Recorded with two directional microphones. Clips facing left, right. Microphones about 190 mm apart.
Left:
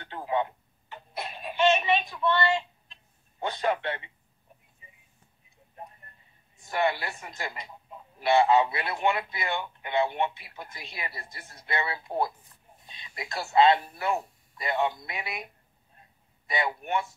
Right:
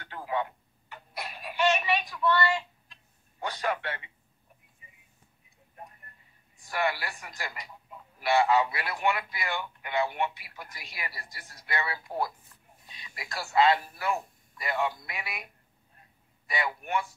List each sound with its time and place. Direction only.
0.0 s a sound: 25° left (ahead or behind)
5.8 s music: 25° left (ahead or behind)
6.6 s a man's voice: 25° left (ahead or behind)